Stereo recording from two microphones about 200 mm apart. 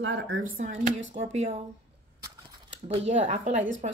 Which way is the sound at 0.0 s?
65° right (ahead or behind).